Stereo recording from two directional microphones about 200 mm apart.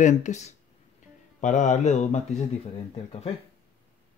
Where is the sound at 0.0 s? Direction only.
35° left (ahead or behind).